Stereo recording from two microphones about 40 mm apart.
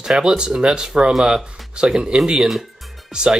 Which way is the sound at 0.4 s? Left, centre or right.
Right.